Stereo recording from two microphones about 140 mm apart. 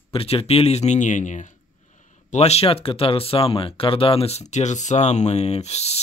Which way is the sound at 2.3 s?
50° left (ahead or behind).